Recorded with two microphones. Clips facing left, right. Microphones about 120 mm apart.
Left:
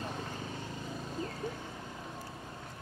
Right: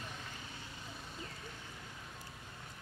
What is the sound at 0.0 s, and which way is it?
Vehicle, 40° left (ahead or behind).